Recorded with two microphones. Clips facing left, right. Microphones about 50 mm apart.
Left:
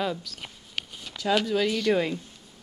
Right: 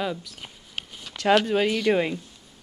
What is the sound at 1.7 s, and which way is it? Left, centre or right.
Speech, centre.